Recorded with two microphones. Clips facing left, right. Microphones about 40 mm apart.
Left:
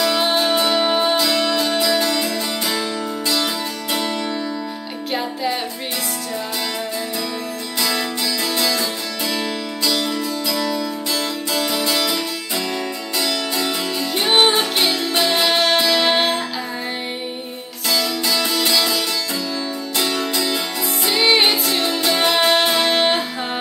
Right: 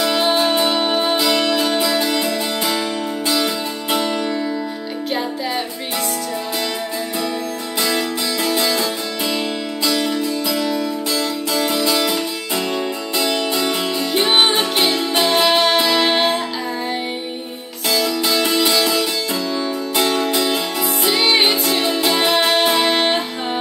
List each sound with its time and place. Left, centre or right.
0.1 s music: centre
1.1 s music: centre
8.5 s music: right
10.5 s music: centre
13.2 s music: right
13.9 s music: centre
17.8 s music: centre
20.2 s music: right
20.5 s music: centre
21.8 s music: centre
22.2 s music: centre